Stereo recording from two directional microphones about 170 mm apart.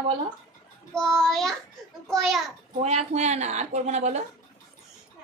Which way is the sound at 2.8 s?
40° right (ahead or behind).